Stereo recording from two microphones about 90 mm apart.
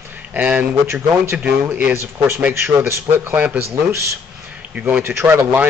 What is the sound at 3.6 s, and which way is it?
Speech, 30° right (ahead or behind).